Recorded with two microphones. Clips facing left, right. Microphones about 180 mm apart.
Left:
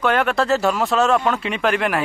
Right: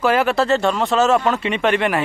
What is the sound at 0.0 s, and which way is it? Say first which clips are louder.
Speech: right 2 dB; 5° right (ahead or behind).